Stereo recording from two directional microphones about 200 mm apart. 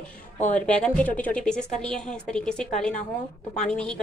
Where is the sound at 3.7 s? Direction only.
5° left (ahead or behind).